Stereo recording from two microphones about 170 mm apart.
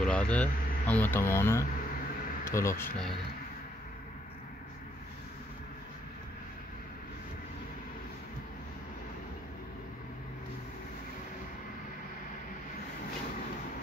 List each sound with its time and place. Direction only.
0.0 s speech: 5° left (ahead or behind)
2.8 s speech: 5° left (ahead or behind)